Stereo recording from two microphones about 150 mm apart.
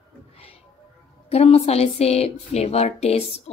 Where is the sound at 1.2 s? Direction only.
40° left (ahead or behind).